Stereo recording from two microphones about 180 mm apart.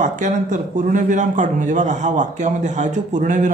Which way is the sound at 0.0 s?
45° right (ahead or behind).